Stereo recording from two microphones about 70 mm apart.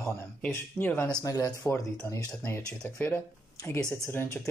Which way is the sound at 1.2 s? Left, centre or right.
Left.